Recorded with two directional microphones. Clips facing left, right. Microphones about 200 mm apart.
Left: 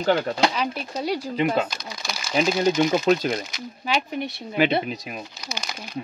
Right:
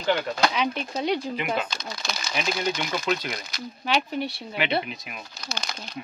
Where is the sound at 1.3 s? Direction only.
40° left (ahead or behind).